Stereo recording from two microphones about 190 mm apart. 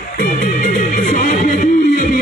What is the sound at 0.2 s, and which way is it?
Music, 45° left (ahead or behind).